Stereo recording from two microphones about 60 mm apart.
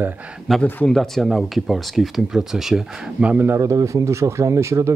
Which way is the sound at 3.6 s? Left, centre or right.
Right.